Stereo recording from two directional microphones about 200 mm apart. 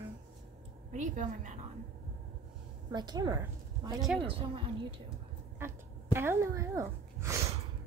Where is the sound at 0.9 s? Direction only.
40° right (ahead or behind).